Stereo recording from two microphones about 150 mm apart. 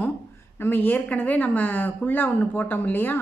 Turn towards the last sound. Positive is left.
turn(degrees=10)  # may be behind; listen again after turning